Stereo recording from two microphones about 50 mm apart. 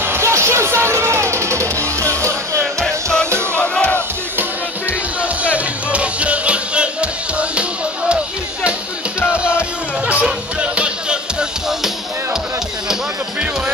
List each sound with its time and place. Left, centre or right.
0.2 s music: right
5.4 s music: right
10.6 s music: right